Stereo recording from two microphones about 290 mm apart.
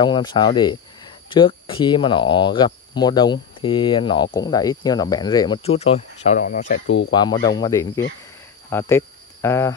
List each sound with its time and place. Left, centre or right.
0.0 s speech: centre
7.1 s speech: centre